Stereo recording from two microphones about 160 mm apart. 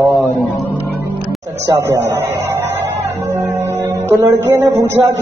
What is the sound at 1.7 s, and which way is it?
Speech, 15° right (ahead or behind).